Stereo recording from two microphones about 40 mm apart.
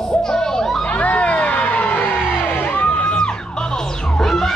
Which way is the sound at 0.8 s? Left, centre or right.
Left.